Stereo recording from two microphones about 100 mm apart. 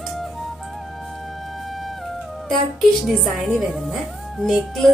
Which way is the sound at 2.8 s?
Centre (ahead or behind).